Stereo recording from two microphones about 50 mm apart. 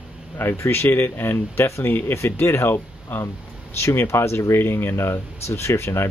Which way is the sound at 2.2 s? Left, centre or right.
Left.